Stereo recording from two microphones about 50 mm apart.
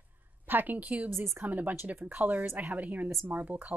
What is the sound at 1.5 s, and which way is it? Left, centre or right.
A woman's voice, right.